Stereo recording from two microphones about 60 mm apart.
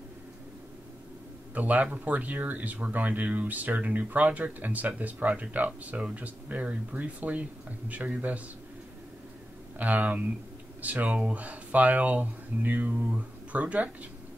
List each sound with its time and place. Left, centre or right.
1.5 s speech: right
9.8 s speech: right